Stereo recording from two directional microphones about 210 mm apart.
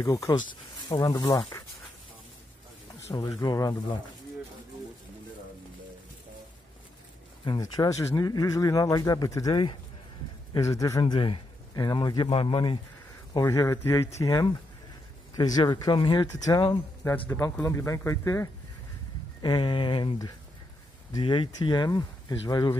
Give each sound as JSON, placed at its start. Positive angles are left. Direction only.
{"t": 0.0, "sound": "speech", "side_deg": 15}
{"t": 3.1, "sound": "speech", "side_deg": 15}
{"t": 7.4, "sound": "speech", "side_deg": 20}